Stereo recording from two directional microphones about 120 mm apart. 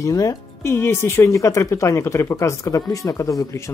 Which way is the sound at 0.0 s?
25° left (ahead or behind).